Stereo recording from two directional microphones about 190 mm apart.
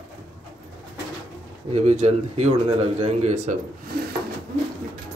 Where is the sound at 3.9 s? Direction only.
55° right (ahead or behind).